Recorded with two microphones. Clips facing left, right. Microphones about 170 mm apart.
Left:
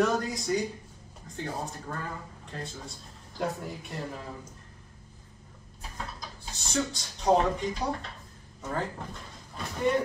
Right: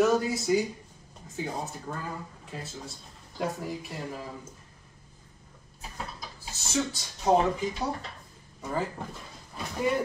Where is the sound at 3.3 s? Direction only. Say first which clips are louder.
Right 1 dB; centre (ahead or behind).